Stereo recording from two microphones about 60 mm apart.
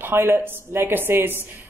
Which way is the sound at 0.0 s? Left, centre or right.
Right.